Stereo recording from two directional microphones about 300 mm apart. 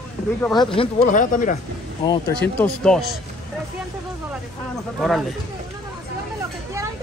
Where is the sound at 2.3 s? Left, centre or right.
Centre.